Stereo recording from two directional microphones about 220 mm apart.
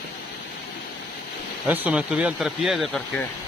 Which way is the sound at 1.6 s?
5° right (ahead or behind).